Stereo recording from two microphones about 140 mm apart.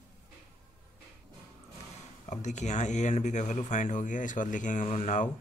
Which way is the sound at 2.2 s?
60° left (ahead or behind).